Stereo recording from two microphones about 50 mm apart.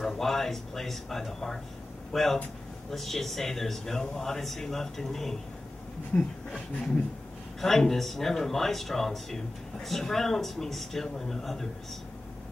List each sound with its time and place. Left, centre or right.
0.0 s speech: centre
6.1 s speech: left
7.6 s speech: centre